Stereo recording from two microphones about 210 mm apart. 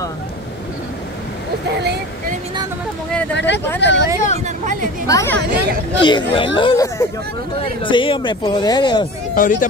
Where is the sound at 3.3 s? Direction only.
55° left (ahead or behind).